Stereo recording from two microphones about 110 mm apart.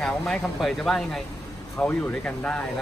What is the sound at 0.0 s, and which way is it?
Speech, 5° left (ahead or behind).